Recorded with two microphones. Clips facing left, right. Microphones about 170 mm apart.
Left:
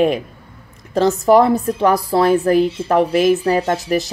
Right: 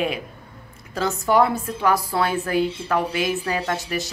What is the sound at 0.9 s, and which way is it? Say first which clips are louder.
A woman's voice: left 9 dB; 40° left (ahead or behind).